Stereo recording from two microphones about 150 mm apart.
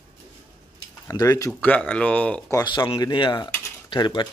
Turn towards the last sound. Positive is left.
turn(degrees=30)  # may be behind; listen again after turning